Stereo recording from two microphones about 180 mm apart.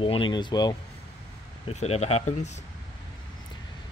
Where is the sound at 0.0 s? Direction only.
25° left (ahead or behind).